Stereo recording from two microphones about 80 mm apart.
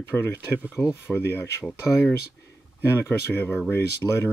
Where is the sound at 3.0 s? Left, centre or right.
Left.